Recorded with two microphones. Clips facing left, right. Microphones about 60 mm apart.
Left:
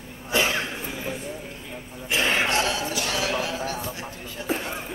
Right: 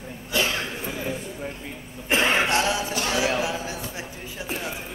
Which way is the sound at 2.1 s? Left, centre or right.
Right.